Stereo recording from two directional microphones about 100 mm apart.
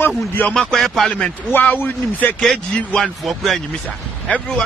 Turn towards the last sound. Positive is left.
turn(degrees=5)  # may be behind; listen again after turning